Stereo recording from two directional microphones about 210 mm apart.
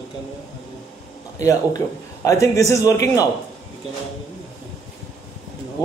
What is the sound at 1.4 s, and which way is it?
A man's voice, 15° left (ahead or behind).